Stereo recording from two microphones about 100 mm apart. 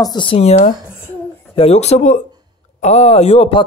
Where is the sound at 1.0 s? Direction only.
80° left.